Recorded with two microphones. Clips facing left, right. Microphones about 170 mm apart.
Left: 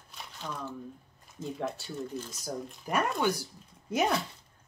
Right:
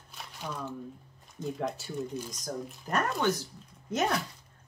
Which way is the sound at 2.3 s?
5° left (ahead or behind).